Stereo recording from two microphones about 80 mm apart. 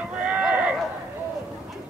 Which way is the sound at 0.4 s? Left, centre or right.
Centre.